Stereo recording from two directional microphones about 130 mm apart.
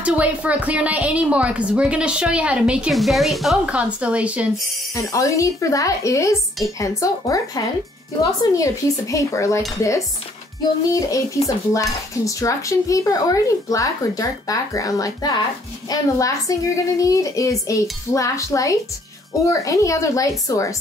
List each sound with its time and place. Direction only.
0.0 s a woman's voice: 10° right (ahead or behind)
5.1 s dishes: 25° left (ahead or behind)
10.9 s dishes: 25° left (ahead or behind)